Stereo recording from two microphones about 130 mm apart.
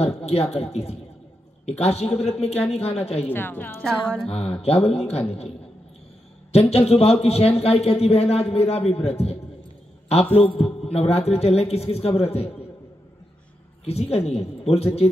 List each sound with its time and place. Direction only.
0.0 s speech: 55° left (ahead or behind)
3.3 s a woman's voice: 15° left (ahead or behind)
4.3 s speech: 50° left (ahead or behind)
6.5 s speech: 50° left (ahead or behind)
10.5 s speech: 50° left (ahead or behind)
13.8 s speech: 55° left (ahead or behind)